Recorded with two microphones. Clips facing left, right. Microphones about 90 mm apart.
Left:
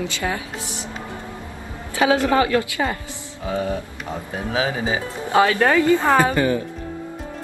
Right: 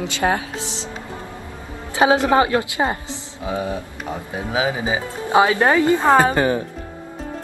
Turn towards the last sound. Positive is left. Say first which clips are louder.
# right 2 dB
turn(degrees=-20)  # may be behind; listen again after turning